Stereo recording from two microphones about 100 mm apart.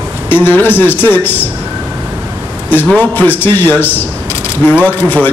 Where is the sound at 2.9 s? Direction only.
20° left (ahead or behind).